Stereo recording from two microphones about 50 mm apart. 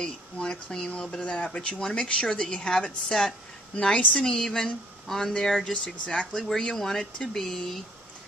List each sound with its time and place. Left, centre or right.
0.0 s speech: centre
3.7 s a woman's voice: left